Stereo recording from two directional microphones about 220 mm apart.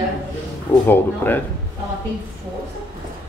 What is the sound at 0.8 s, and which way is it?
Speech, 10° left (ahead or behind).